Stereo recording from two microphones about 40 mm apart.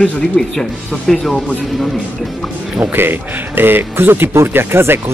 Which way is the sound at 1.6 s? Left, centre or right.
Centre.